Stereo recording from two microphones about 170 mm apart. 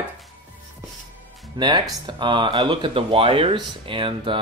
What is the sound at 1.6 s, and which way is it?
Speech, 25° right (ahead or behind).